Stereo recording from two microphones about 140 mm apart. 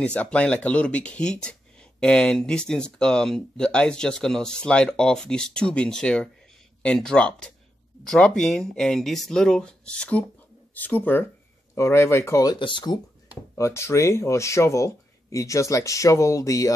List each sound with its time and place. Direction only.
0.0 s speech: 10° left (ahead or behind); by 13.0 s 30° left (ahead or behind)
13.6 s speech: 20° left (ahead or behind)